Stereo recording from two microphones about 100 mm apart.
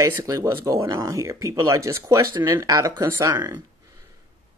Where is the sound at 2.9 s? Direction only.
25° right (ahead or behind).